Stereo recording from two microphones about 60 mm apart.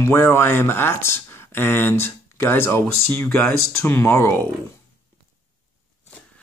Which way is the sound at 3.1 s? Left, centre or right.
Left.